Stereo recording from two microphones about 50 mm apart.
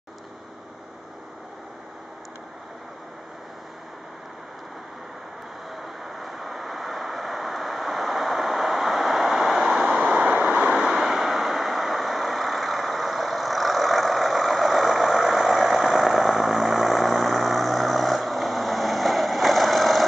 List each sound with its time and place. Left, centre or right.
5.8 s vehicle: centre
9.8 s vehicle: centre
10.8 s vehicle: centre